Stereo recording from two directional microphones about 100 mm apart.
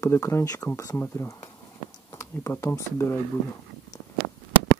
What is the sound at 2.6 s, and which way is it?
Speech, 25° left (ahead or behind).